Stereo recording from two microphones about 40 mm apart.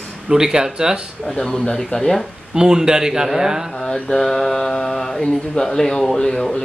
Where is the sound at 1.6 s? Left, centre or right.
Centre.